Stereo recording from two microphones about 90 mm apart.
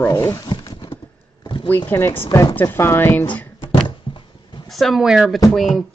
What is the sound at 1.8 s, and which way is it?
Speech, 25° left (ahead or behind).